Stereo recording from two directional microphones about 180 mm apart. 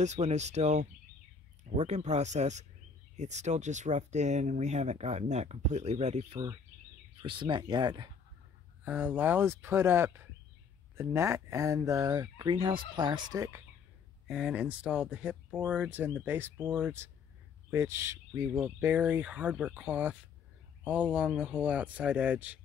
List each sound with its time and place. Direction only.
0.0 s speech: 40° right (ahead or behind); by 8.1 s 25° right (ahead or behind)
8.8 s speech: 10° right (ahead or behind)
14.2 s speech: 5° right (ahead or behind)